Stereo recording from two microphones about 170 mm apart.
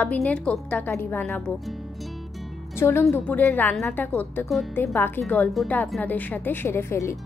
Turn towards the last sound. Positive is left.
turn(degrees=15)  # may be behind; listen again after turning